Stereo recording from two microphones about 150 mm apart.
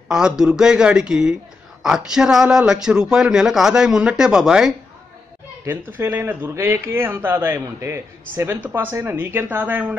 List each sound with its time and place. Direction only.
0.1 s a man's voice: 5° right (ahead or behind)
5.9 s speech: 15° right (ahead or behind)